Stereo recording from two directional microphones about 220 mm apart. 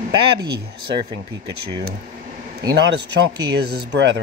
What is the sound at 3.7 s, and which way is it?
Speech, 50° right (ahead or behind).